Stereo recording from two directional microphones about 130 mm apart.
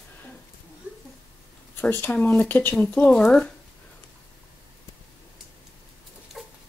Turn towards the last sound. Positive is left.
turn(degrees=0)  # may be behind; listen again after turning